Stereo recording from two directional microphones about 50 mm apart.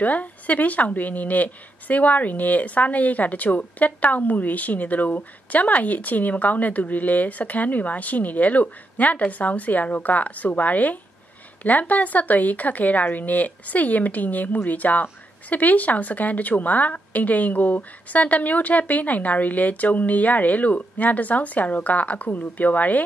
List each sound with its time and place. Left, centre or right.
0.0 s a woman's voice: left